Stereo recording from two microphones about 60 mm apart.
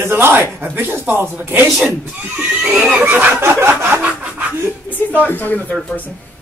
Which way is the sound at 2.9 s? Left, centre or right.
Right.